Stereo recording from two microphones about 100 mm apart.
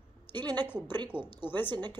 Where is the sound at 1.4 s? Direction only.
20° left (ahead or behind).